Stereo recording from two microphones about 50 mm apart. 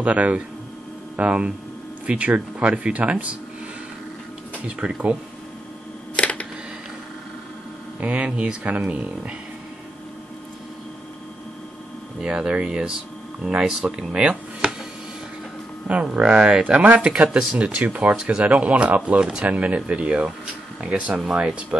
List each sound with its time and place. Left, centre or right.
0.0 s speech: right
4.6 s speech: right
6.1 s a sound: left
8.0 s speech: right
12.2 s speech: centre
15.9 s speech: centre
18.1 s speech: centre
18.4 s speech: right
21.3 s speech: centre